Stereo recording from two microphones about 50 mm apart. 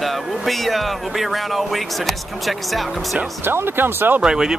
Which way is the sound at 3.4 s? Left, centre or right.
Right.